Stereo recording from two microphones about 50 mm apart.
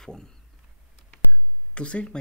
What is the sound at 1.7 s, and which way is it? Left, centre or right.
Speech, left.